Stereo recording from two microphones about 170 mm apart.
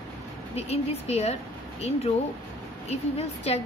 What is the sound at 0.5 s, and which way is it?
A woman's voice, 40° left (ahead or behind).